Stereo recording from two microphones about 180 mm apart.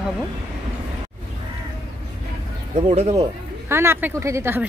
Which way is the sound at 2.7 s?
35° right (ahead or behind).